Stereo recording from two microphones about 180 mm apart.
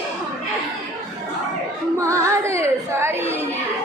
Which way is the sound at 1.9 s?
15° right (ahead or behind).